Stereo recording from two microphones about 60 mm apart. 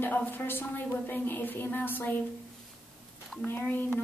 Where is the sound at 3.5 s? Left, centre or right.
Left.